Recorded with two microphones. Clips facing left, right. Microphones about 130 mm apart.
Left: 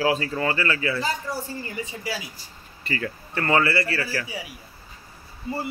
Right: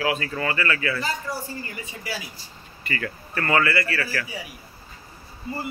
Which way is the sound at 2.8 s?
25° left (ahead or behind).